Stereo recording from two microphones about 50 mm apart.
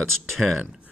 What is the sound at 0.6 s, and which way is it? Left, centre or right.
Speech, centre.